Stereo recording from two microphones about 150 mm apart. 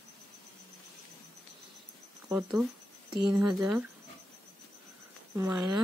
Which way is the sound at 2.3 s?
5° right (ahead or behind).